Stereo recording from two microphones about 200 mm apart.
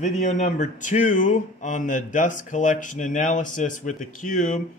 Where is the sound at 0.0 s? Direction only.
35° left (ahead or behind).